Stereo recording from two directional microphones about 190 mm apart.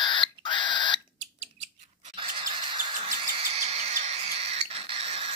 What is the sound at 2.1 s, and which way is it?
Rodents, 25° right (ahead or behind).